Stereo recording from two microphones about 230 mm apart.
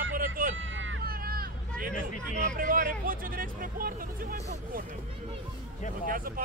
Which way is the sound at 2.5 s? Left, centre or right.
Right.